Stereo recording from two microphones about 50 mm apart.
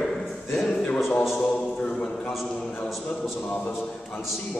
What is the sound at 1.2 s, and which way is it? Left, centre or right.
Speech, centre.